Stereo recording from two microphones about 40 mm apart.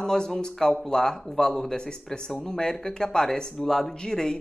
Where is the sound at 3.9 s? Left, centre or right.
Centre.